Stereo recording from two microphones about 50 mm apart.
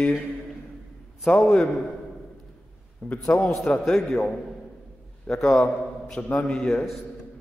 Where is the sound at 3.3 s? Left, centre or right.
Left.